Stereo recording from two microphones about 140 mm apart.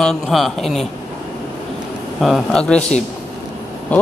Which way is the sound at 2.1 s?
Centre (ahead or behind).